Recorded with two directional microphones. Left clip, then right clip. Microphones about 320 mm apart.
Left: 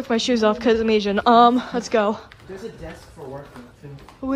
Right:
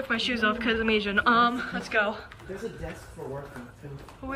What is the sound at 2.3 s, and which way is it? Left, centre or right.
A woman's voice, centre.